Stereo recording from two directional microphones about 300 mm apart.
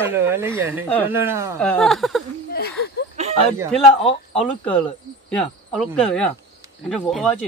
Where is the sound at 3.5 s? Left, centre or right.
Centre.